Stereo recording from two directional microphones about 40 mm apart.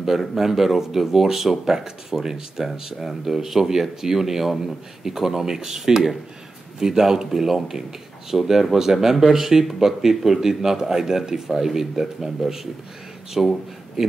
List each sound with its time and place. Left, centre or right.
0.4 s speech: centre
14.0 s speech: centre